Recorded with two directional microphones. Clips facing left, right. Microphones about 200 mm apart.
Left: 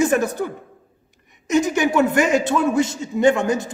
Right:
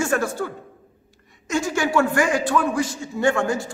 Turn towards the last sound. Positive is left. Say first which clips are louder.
# left 4 dB
turn(degrees=20)  # may be behind; listen again after turning